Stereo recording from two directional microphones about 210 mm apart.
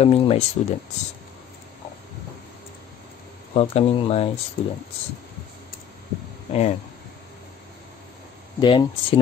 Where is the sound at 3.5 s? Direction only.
30° left (ahead or behind).